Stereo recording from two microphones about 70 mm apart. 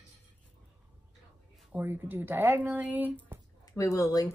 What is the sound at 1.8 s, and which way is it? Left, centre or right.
Speech, right.